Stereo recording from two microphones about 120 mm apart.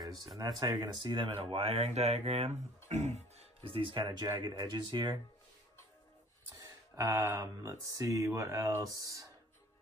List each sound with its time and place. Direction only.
0.4 s speech: 35° right (ahead or behind); by 3.4 s 65° right (ahead or behind)
3.7 s speech: 45° right (ahead or behind)
6.6 s speech: 25° right (ahead or behind)